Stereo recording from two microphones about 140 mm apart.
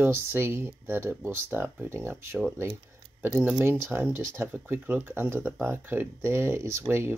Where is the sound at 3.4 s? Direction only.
10° right (ahead or behind).